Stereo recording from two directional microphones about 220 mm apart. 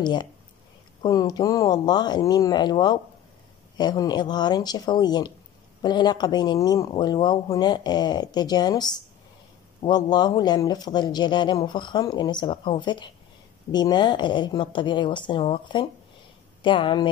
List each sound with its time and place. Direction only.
0.0 s speech: 20° left (ahead or behind)